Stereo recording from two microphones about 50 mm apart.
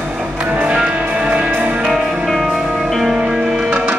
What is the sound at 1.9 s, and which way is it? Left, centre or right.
Music, centre.